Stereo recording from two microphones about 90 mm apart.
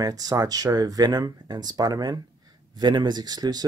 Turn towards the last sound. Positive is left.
turn(degrees=-45)  # may be behind; listen again after turning